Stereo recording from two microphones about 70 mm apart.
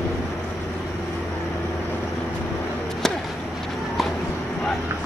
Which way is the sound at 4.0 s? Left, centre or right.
Centre.